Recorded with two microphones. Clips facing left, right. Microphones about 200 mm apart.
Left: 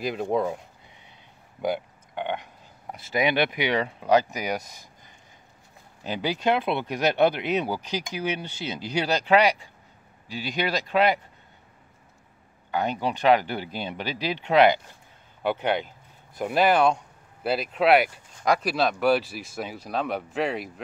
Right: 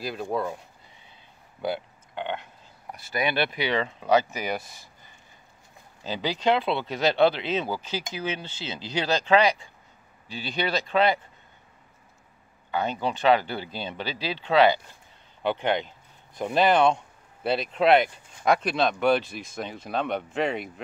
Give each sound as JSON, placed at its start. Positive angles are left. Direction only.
{"t": 0.0, "sound": "speech", "side_deg": 20}
{"t": 1.6, "sound": "a sound", "side_deg": 15}
{"t": 2.9, "sound": "speech", "side_deg": 20}
{"t": 6.0, "sound": "speech", "side_deg": 15}
{"t": 12.7, "sound": "speech", "side_deg": 15}